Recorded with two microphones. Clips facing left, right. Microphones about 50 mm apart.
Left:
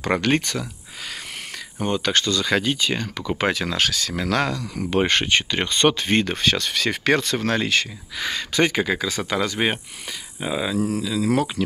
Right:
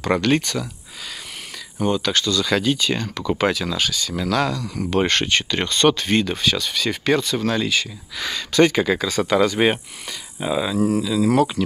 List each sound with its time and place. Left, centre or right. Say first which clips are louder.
0.0 s speech: right 2 dB; left
1.9 s speech: right 1 dB; left; by 3.3 s centre
3.3 s speech: right 1 dB; left
3.7 s speech: left 1 dB; left
4.1 s speech: right 1 dB; left
4.7 s speech: even; centre
6.1 s speech: even; left
8.2 s speech: right 4 dB; left; by 9.8 s centre
10.4 s speech: right 2 dB; centre
10.8 s speech: right 4 dB; centre